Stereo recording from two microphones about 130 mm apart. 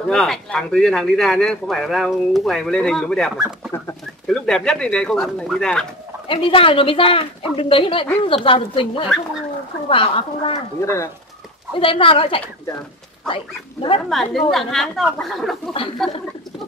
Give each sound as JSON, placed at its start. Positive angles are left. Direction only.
{"t": 0.1, "sound": "a man's voice", "side_deg": 5}
{"t": 3.7, "sound": "bird", "side_deg": 15}
{"t": 4.3, "sound": "a man's voice", "side_deg": 5}
{"t": 6.2, "sound": "a woman's voice", "side_deg": 45}
{"t": 10.8, "sound": "speech", "side_deg": 20}
{"t": 11.8, "sound": "a woman's voice", "side_deg": 45}
{"t": 14.0, "sound": "a man's voice", "side_deg": 0}